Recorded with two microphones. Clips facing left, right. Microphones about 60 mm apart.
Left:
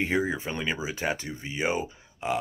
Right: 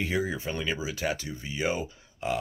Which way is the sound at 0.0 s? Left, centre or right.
Left.